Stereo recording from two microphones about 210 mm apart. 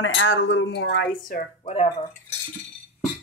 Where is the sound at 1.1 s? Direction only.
40° left (ahead or behind).